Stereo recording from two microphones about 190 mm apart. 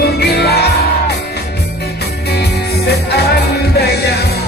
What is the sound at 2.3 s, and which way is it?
Music, 60° left (ahead or behind).